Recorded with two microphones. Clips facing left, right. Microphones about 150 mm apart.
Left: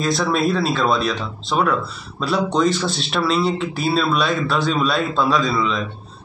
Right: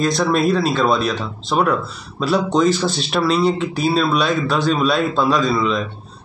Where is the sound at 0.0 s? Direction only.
Centre (ahead or behind).